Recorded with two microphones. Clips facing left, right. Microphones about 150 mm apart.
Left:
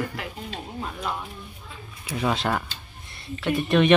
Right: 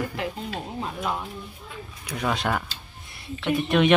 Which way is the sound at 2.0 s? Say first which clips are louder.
Left 1 dB; 5° left (ahead or behind).